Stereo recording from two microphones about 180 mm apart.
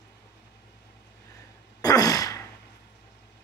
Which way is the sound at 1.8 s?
20° left (ahead or behind).